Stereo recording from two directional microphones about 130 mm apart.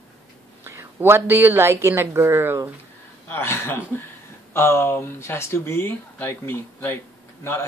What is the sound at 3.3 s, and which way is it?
Speech, 20° left (ahead or behind).